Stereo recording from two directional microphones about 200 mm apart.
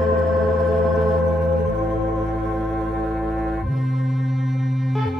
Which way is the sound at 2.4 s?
Centre (ahead or behind).